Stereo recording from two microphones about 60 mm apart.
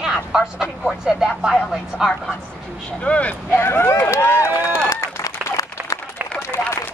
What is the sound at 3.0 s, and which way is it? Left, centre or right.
Speech, left.